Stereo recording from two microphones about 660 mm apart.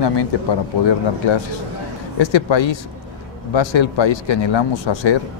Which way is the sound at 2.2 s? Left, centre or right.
Left.